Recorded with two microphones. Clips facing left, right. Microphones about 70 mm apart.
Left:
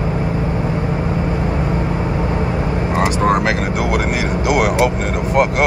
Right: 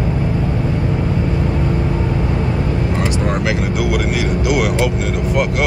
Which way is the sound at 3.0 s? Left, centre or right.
Left.